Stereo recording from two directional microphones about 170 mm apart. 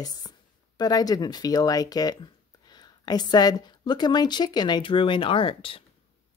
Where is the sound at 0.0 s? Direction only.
25° left (ahead or behind).